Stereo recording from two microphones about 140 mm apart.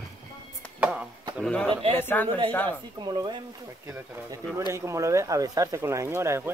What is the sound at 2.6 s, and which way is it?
Speech, 30° right (ahead or behind).